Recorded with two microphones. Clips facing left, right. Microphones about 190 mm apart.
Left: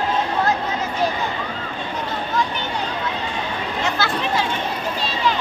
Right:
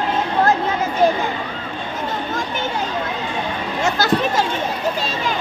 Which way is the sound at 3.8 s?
45° right (ahead or behind).